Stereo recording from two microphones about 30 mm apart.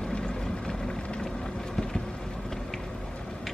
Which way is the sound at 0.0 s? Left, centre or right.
Left.